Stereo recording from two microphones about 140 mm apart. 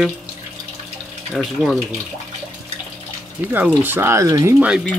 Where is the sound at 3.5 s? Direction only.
15° right (ahead or behind).